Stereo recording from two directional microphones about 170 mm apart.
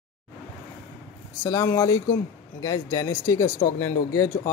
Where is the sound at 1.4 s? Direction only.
20° left (ahead or behind).